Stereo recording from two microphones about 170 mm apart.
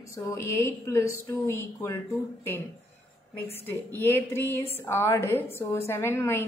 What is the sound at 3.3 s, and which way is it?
A woman's voice, 10° left (ahead or behind).